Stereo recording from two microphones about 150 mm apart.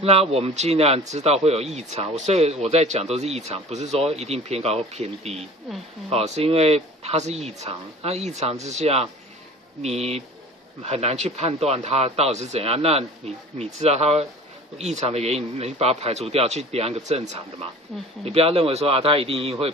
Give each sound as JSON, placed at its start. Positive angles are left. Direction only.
{"t": 0.0, "sound": "a man's voice", "side_deg": -45}
{"t": 17.9, "sound": "speech", "side_deg": 0}
{"t": 18.2, "sound": "speech", "side_deg": -40}